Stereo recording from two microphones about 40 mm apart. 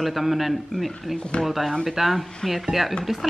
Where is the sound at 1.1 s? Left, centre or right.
Left.